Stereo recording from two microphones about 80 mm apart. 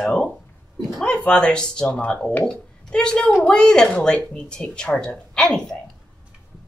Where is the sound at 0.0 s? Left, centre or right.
Centre.